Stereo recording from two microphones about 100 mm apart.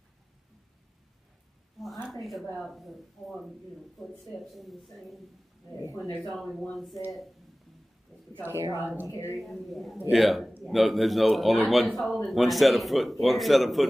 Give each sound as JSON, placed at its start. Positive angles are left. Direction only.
{"t": 1.8, "sound": "a sound", "side_deg": 5}
{"t": 2.5, "sound": "a man's voice", "side_deg": 0}
{"t": 6.1, "sound": "a man's voice", "side_deg": 0}
{"t": 8.4, "sound": "speech", "side_deg": -20}
{"t": 9.0, "sound": "speech", "side_deg": 30}
{"t": 9.4, "sound": "a man's voice", "side_deg": 0}